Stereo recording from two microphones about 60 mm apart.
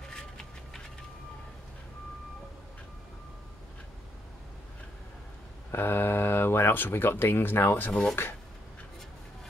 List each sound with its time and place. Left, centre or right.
5.7 s speech: left